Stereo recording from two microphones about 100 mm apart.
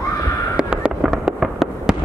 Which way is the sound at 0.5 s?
10° right (ahead or behind).